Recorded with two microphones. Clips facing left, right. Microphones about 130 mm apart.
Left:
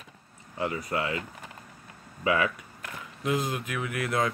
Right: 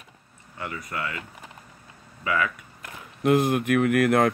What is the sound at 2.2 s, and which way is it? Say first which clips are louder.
Speech: left 1 dB; 25° left (ahead or behind).